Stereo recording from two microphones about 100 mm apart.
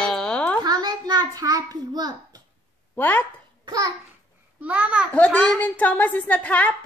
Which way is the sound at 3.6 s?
35° right (ahead or behind).